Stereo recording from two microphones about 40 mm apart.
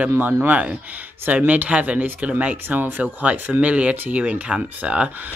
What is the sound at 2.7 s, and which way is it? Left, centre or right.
Speech, right.